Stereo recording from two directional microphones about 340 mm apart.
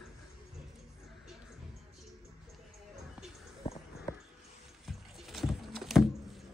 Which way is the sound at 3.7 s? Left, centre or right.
Centre.